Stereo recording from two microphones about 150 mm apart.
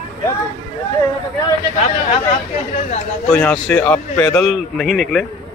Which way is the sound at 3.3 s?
10° left (ahead or behind).